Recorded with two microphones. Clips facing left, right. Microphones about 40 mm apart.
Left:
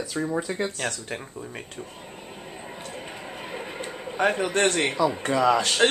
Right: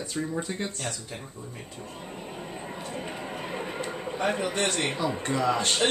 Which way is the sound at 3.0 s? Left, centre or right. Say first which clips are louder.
Right 2 dB; centre.